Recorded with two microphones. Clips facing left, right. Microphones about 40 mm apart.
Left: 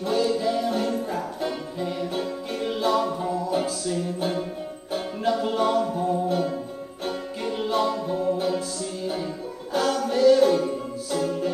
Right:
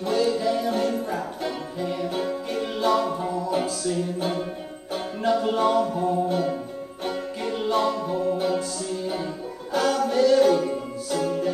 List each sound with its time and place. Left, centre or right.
0.0 s music: centre
5.6 s music: centre